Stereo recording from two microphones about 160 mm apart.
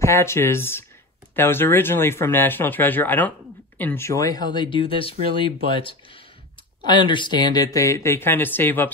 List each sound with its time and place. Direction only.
0.0 s speech: 15° left (ahead or behind)